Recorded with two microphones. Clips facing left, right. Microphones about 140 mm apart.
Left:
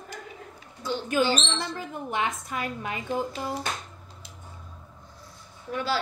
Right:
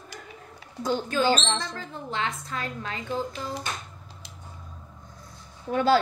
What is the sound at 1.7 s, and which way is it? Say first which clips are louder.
A woman's voice: left 2 dB; 15° left (ahead or behind).